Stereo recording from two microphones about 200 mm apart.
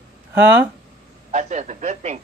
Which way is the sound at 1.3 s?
35° right (ahead or behind).